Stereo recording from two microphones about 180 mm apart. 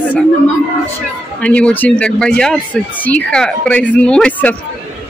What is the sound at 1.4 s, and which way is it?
Speech, 5° left (ahead or behind).